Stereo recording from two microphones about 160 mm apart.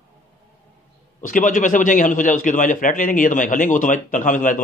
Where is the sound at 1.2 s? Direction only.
55° left (ahead or behind).